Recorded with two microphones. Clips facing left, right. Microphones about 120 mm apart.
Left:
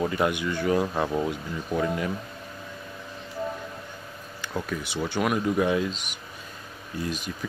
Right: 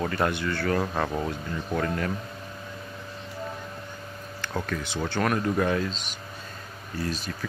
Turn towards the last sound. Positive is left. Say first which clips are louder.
# even
turn(degrees=15)  # may be behind; listen again after turning